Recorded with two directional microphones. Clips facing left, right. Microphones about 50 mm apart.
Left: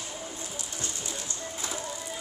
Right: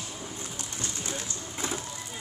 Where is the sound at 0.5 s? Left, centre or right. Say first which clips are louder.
Right 1 dB; right.